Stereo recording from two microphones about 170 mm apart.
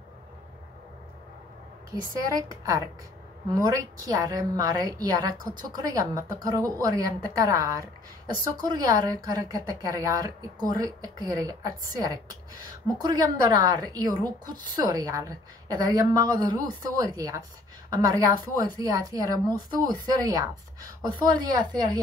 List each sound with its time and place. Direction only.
2.1 s a woman's voice: 20° right (ahead or behind)
4.0 s a woman's voice: 20° right (ahead or behind)